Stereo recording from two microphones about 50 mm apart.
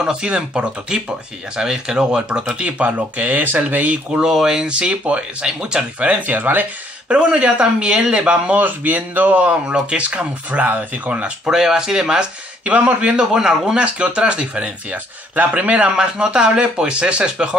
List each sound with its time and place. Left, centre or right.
0.0 s speech: centre
4.1 s speech: centre
6.0 s speech: right
7.1 s speech: right
8.5 s speech: right
9.7 s speech: centre; by 11.2 s right
11.5 s speech: centre
13.2 s speech: centre
13.9 s speech: right
16.0 s speech: centre